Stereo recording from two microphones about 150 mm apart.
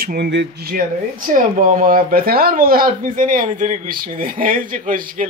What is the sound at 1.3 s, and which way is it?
Speech, 60° right (ahead or behind).